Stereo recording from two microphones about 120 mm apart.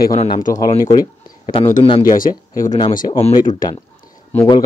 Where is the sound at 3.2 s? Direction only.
75° left (ahead or behind).